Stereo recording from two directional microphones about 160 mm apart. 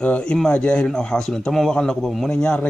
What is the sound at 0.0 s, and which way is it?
A man's voice, 5° left (ahead or behind).